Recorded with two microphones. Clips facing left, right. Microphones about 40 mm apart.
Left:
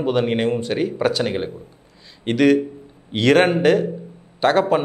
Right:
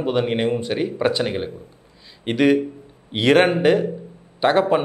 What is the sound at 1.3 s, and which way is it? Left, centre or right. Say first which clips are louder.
Speech: left 1 dB; centre.